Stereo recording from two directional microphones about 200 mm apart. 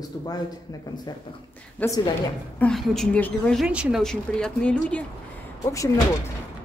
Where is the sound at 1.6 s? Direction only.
10° left (ahead or behind).